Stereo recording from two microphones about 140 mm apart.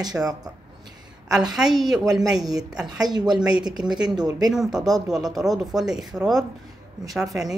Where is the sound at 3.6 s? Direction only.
30° right (ahead or behind).